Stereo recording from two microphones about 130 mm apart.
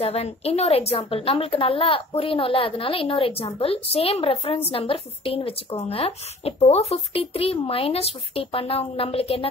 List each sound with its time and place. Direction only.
0.0 s a woman's voice: 50° left (ahead or behind)